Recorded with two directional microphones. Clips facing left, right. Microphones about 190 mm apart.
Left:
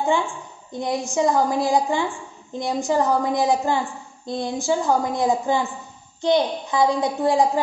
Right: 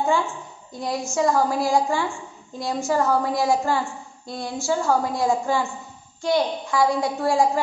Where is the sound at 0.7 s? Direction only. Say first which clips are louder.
Left 2 dB; 20° left (ahead or behind).